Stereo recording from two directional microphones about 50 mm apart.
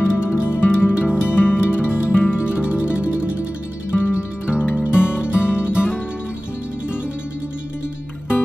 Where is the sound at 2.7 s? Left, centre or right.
Right.